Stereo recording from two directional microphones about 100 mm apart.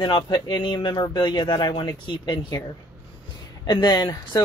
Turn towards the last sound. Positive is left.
turn(degrees=40)  # may be behind; listen again after turning